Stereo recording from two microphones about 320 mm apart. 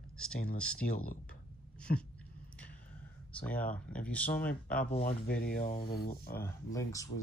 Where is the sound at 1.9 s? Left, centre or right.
Left.